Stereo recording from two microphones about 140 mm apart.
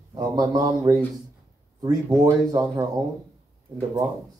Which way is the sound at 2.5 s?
30° right (ahead or behind).